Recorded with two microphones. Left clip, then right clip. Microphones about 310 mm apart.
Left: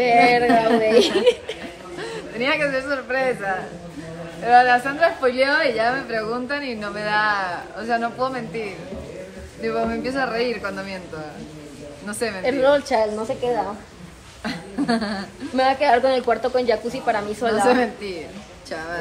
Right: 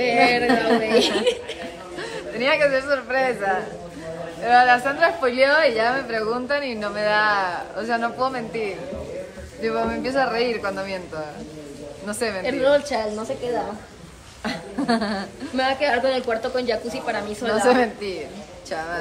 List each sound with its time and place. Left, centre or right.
0.0 s a woman's voice: centre
2.0 s a man's voice: centre
12.4 s a woman's voice: left
14.4 s a sound: centre
15.5 s a woman's voice: centre
17.6 s a woman's voice: centre